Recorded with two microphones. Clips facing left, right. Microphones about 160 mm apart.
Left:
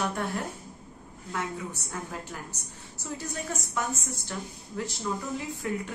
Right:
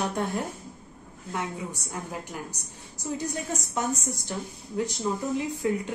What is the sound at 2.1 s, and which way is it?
A woman's voice, 15° right (ahead or behind).